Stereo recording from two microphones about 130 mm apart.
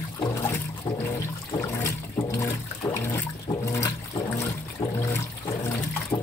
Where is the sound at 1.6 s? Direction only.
25° left (ahead or behind).